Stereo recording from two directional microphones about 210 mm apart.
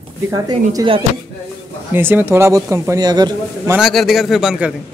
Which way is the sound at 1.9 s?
10° right (ahead or behind).